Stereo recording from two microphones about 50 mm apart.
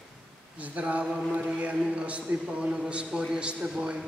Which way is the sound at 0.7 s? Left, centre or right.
Right.